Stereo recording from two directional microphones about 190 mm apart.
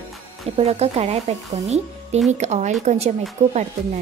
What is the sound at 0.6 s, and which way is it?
Speech, 30° right (ahead or behind).